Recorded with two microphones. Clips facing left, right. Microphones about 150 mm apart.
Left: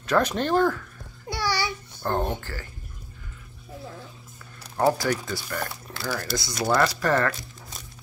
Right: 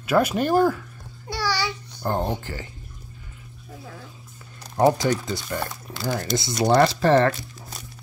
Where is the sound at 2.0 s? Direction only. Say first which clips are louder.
Right 1 dB; 15° right (ahead or behind).